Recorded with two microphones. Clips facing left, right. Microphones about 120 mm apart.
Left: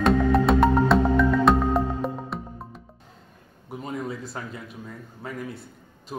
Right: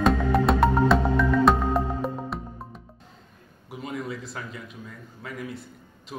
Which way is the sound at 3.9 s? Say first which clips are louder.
Left 1 dB; centre (ahead or behind).